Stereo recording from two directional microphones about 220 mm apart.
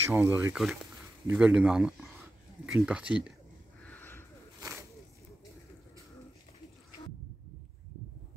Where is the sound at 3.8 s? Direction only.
10° left (ahead or behind).